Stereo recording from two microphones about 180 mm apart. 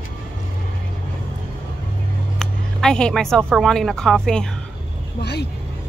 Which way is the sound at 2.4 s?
5° left (ahead or behind).